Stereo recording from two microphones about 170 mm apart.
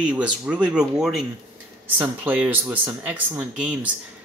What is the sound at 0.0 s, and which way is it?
Speech, 5° right (ahead or behind).